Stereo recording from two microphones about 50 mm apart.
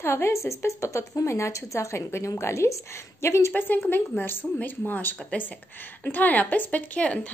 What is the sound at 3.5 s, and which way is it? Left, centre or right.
A woman's voice, left.